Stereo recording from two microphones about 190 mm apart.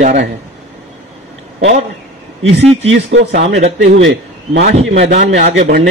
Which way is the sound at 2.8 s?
65° right (ahead or behind).